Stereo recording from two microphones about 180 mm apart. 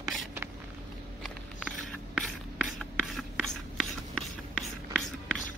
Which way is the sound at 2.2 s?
Centre (ahead or behind).